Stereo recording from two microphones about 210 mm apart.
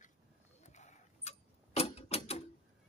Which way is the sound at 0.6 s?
35° left (ahead or behind).